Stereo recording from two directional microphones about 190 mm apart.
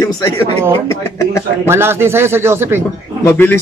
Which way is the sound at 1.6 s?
15° right (ahead or behind).